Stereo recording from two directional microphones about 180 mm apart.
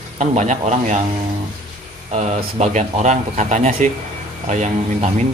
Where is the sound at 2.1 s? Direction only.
40° right (ahead or behind).